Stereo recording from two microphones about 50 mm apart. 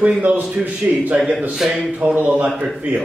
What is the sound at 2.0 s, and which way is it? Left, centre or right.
Speech, right.